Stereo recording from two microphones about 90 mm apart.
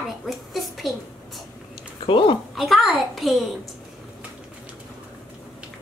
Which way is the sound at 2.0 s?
70° left (ahead or behind).